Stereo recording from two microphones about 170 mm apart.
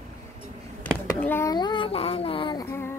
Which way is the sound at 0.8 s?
10° left (ahead or behind).